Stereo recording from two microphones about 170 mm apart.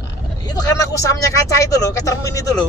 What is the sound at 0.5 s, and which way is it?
Speech, 20° left (ahead or behind).